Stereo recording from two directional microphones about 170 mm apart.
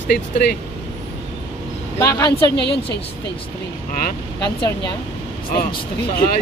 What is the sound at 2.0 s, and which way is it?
Speech, 20° left (ahead or behind).